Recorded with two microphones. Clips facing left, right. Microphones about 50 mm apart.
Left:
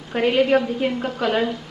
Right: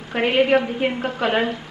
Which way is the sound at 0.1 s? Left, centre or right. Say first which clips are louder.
Even; right.